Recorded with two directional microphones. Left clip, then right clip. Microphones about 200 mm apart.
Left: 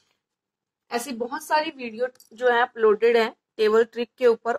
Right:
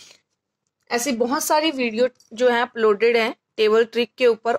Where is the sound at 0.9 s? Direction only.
45° right (ahead or behind).